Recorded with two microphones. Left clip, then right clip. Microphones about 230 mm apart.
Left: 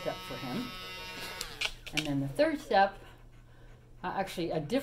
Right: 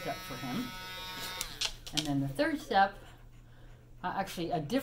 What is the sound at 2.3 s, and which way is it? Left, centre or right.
Speech, centre.